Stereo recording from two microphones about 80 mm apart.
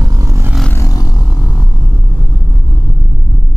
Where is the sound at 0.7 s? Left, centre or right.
Left.